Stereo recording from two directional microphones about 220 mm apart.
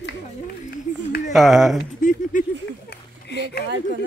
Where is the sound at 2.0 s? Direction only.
35° left (ahead or behind).